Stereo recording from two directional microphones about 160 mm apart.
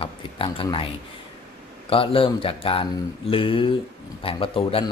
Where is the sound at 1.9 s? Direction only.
35° left (ahead or behind).